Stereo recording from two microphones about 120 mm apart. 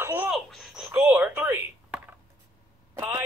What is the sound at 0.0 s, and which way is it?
Babbling, 15° right (ahead or behind).